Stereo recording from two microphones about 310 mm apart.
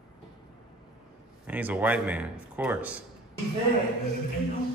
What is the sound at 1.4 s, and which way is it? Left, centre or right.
Speech, centre.